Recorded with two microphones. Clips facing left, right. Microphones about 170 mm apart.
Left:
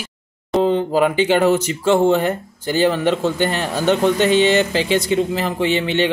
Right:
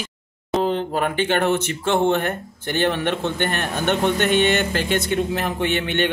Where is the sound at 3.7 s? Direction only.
20° right (ahead or behind).